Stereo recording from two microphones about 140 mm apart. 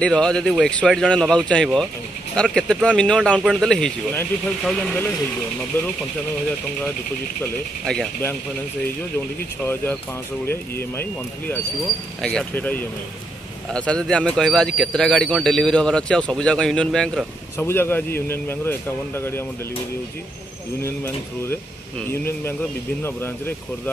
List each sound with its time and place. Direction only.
0.0 s speech: 5° left (ahead or behind)
7.8 s speech: 5° left (ahead or behind)
9.6 s speech: 15° left (ahead or behind)
17.6 s speech: 15° left (ahead or behind)
20.8 s speech: 15° left (ahead or behind)